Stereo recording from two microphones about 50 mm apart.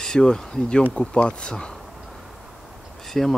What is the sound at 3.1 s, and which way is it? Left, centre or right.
Speech, centre.